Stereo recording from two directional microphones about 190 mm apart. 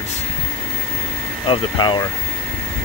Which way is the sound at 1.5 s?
25° left (ahead or behind).